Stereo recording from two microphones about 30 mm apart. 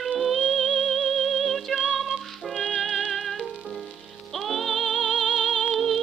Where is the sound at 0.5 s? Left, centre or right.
Right.